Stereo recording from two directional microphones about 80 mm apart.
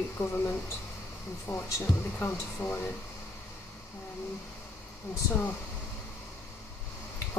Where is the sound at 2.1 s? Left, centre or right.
Left.